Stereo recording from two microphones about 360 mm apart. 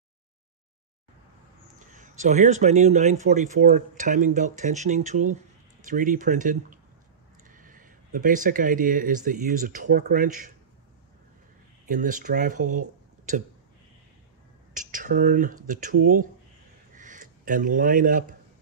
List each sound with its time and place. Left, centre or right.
1.8 s speech: right
11.9 s speech: right
14.7 s speech: right
16.9 s a sound: right